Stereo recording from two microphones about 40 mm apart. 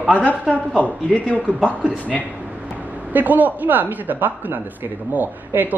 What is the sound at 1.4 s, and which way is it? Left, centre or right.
Speech, right.